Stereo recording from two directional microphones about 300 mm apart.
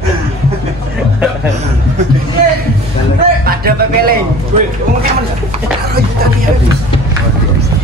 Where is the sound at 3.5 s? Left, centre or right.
Right.